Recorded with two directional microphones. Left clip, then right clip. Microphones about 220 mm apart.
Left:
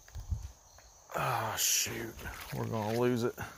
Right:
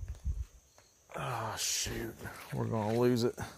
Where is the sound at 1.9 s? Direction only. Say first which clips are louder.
Left 1 dB; 10° right (ahead or behind).